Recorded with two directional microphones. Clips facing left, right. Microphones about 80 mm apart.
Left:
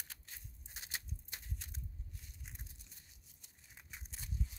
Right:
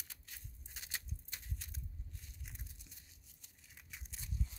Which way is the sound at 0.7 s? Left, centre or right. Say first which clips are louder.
Left 1 dB; centre.